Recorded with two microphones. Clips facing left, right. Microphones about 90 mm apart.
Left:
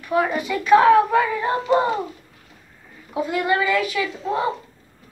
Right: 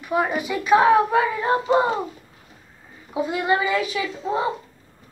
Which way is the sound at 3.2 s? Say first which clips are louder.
Left 1 dB; 20° right (ahead or behind).